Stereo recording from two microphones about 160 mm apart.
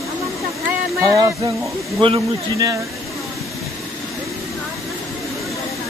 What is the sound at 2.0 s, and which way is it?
Speech, 30° right (ahead or behind).